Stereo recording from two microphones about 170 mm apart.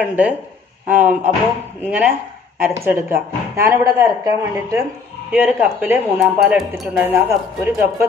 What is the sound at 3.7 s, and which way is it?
Speech, 15° right (ahead or behind).